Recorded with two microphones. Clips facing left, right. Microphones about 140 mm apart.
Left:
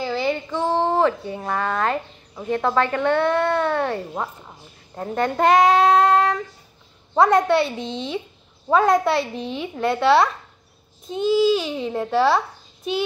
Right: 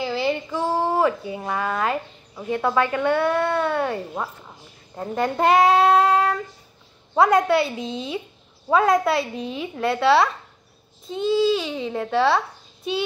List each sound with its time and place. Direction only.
0.0 s a sound: centre (ahead or behind)
2.5 s speech: 10° right (ahead or behind)
5.1 s a child's voice: 5° right (ahead or behind)